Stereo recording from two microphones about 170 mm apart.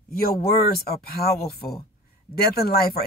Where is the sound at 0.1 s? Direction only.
65° left (ahead or behind).